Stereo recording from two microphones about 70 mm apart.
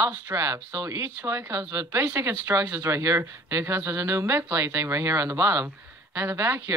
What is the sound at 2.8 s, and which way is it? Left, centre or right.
Speech, right.